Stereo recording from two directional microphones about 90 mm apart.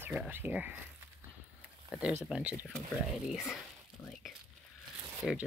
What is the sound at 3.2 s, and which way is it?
Speech, 5° right (ahead or behind).